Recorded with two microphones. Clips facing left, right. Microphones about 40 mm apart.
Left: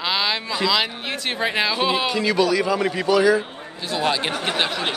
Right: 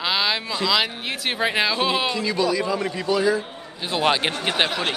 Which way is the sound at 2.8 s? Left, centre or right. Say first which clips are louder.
Left 4 dB; left.